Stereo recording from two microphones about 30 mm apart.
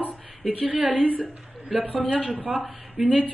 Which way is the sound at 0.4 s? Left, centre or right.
Right.